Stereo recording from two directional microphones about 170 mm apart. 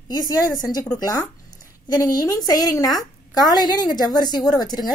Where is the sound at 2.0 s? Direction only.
20° left (ahead or behind).